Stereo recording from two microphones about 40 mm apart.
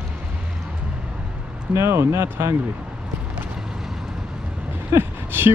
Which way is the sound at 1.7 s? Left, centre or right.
Right.